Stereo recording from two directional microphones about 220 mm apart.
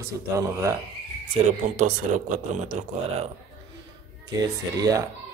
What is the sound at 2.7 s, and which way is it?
Speech, 30° right (ahead or behind).